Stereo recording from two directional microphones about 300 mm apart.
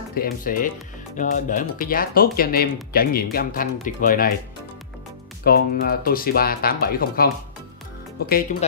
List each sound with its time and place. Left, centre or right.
0.1 s speech: left
5.4 s speech: left
8.3 s speech: left